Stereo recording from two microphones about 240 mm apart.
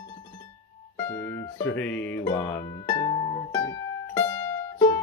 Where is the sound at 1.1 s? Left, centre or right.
Centre.